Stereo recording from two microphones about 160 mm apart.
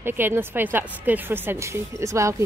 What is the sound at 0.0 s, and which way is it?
Speech, 15° right (ahead or behind).